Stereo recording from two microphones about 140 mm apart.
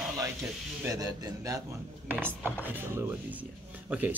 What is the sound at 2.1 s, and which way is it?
Speech, 15° right (ahead or behind).